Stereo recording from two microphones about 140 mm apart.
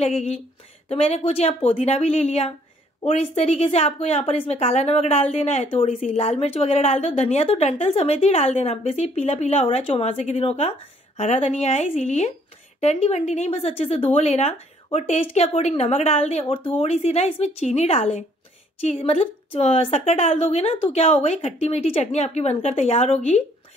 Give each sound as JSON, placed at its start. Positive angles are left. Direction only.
{"t": 0.0, "sound": "speech", "side_deg": 50}